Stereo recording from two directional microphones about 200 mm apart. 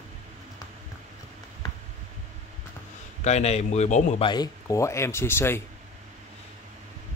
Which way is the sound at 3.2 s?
35° left (ahead or behind).